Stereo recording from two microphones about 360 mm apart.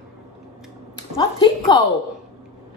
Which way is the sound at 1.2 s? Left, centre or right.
Centre.